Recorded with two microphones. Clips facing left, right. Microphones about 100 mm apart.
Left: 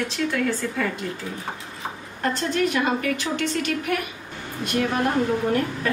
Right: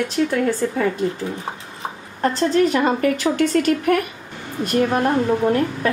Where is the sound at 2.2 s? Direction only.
35° right (ahead or behind).